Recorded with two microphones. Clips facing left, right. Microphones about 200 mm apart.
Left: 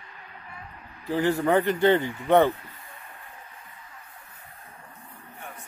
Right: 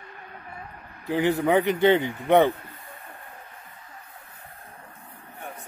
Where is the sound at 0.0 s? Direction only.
55° right (ahead or behind).